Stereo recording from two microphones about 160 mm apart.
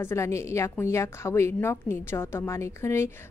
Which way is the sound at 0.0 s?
15° left (ahead or behind).